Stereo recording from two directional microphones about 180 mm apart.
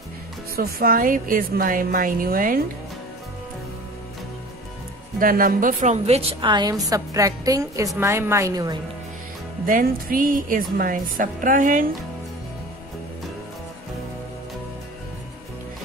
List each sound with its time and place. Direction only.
0.6 s a woman's voice: 55° right (ahead or behind)
5.2 s a woman's voice: 50° right (ahead or behind); by 6.5 s 35° right (ahead or behind)
6.5 s a woman's voice: 20° right (ahead or behind)
9.7 s a woman's voice: 50° right (ahead or behind)